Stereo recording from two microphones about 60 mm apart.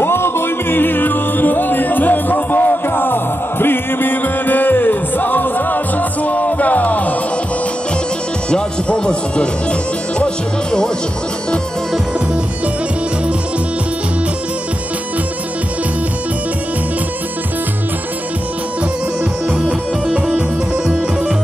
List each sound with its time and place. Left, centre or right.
0.0 s music: left
8.5 s music: centre
19.6 s music: centre